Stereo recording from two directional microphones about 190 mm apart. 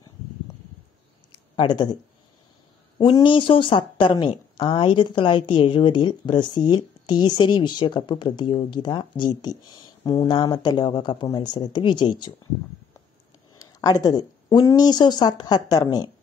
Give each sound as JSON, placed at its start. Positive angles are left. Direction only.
{"t": 1.6, "sound": "speech", "side_deg": 25}
{"t": 3.0, "sound": "speech", "side_deg": 20}
{"t": 13.6, "sound": "speech", "side_deg": 20}